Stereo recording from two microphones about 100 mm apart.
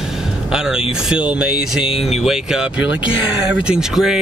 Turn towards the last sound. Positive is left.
turn(degrees=-5)  # may be behind; listen again after turning